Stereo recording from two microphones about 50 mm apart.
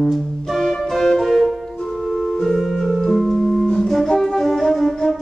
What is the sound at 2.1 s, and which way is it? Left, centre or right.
Organ, centre.